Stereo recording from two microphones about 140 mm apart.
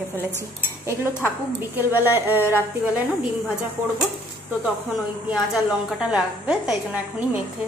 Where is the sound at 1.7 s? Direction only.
15° right (ahead or behind).